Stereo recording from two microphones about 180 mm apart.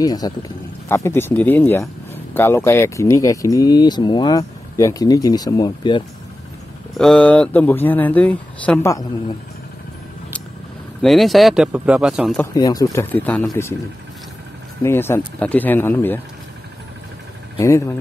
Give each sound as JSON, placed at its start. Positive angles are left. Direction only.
{"t": 0.0, "sound": "speech", "side_deg": 20}
{"t": 7.0, "sound": "speech", "side_deg": 5}
{"t": 11.0, "sound": "speech", "side_deg": 0}
{"t": 12.5, "sound": "speech", "side_deg": 20}
{"t": 14.8, "sound": "speech", "side_deg": 15}
{"t": 17.6, "sound": "speech", "side_deg": 15}